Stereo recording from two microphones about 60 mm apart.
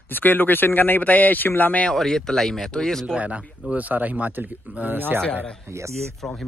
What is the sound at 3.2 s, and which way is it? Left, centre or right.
Speech, right.